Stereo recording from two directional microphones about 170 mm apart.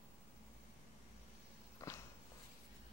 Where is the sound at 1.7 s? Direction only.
15° left (ahead or behind).